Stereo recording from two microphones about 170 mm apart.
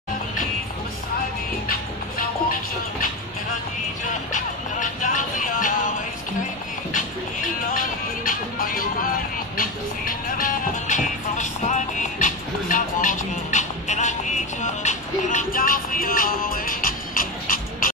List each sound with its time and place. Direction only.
1.7 s music: 55° left (ahead or behind)
4.3 s music: 50° left (ahead or behind)
7.7 s music: 55° left (ahead or behind)